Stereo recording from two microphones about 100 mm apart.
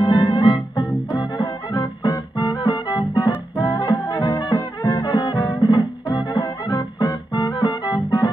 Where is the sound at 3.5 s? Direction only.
45° left (ahead or behind).